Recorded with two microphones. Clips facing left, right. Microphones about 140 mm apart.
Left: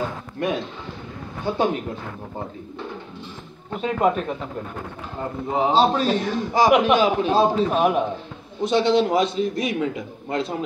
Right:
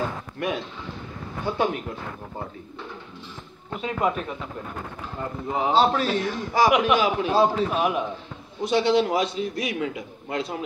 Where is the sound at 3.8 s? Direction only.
40° left (ahead or behind).